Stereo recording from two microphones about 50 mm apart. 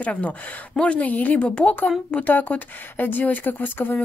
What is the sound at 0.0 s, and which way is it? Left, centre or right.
Speech, left.